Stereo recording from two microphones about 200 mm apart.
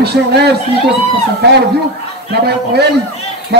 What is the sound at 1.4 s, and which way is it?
A man's voice, 55° right (ahead or behind).